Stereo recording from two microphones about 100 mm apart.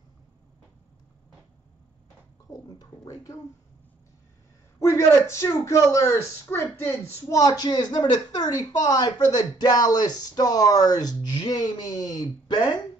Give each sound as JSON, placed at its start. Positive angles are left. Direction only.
{"t": 2.7, "sound": "speech", "side_deg": 35}
{"t": 4.7, "sound": "speech", "side_deg": 30}
{"t": 7.2, "sound": "speech", "side_deg": 35}